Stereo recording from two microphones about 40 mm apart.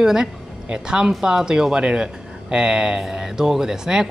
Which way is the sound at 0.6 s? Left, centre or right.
Right.